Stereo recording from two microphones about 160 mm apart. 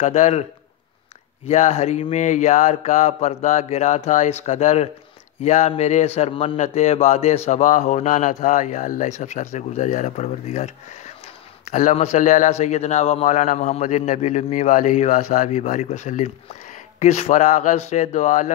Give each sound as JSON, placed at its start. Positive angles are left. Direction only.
{"t": 0.0, "sound": "a man's voice", "side_deg": 45}
{"t": 1.5, "sound": "a man's voice", "side_deg": 45}